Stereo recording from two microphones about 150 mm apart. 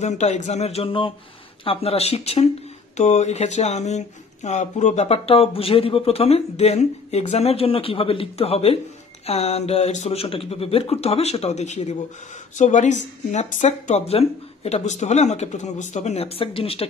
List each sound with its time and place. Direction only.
0.0 s speech: 50° left (ahead or behind)